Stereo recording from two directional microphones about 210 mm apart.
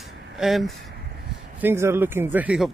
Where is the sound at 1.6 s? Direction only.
10° right (ahead or behind).